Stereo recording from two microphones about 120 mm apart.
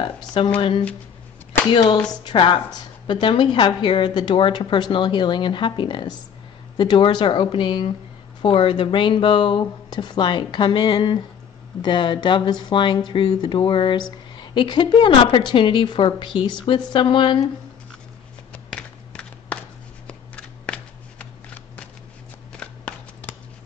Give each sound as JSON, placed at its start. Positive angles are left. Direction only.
{"t": 0.0, "sound": "a woman's voice", "side_deg": 40}
{"t": 18.7, "sound": "a sound", "side_deg": 10}
{"t": 20.1, "sound": "shuffling cards", "side_deg": 5}
{"t": 22.6, "sound": "shuffling cards", "side_deg": 10}